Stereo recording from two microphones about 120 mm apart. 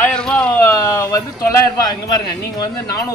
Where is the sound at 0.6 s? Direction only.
25° left (ahead or behind).